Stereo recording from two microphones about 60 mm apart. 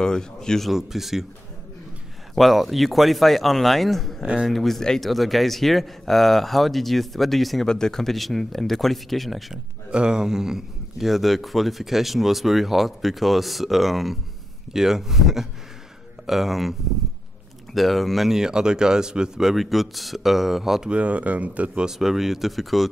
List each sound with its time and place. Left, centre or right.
0.0 s speech: centre
0.7 s speech: centre
2.3 s speech: centre
9.8 s speech: centre
17.7 s speech: centre
20.9 s speech: right
21.8 s speech: centre